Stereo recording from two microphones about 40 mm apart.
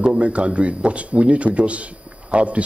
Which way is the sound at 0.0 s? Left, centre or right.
Right.